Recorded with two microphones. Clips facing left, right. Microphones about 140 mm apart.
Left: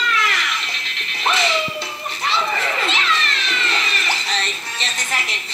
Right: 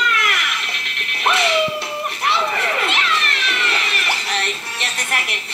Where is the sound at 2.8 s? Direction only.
60° right (ahead or behind).